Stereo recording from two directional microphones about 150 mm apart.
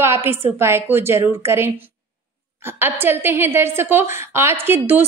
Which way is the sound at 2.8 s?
15° right (ahead or behind).